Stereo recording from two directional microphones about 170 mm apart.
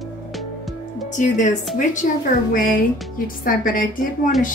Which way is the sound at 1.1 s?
45° left (ahead or behind).